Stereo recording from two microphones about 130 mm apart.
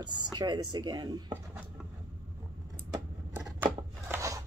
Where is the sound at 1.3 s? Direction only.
10° right (ahead or behind).